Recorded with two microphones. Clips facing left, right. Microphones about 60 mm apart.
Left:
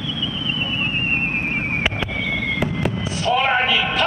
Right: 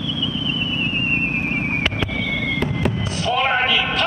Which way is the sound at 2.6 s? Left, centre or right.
Centre.